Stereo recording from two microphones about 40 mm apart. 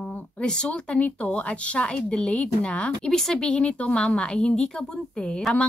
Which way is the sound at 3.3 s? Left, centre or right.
Left.